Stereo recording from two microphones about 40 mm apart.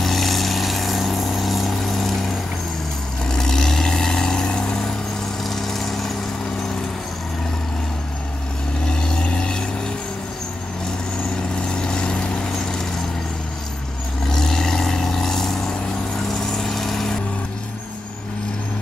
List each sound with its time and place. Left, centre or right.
0.0 s vehicle: centre
3.3 s vehicle: centre
5.4 s vehicle: centre
8.8 s vehicle: centre
11.5 s vehicle: left
14.2 s vehicle: centre